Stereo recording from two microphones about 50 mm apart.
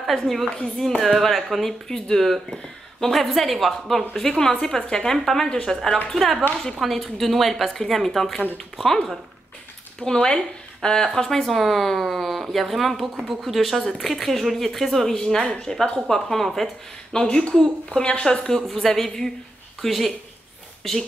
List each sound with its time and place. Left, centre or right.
0.0 s a woman's voice: centre
6.1 s a woman's voice: centre
10.0 s a woman's voice: centre
18.7 s speech: centre